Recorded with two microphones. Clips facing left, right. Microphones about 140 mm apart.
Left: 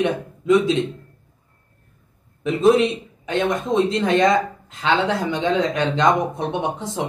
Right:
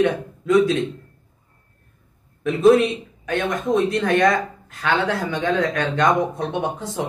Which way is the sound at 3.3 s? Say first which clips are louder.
Even; 20° left (ahead or behind).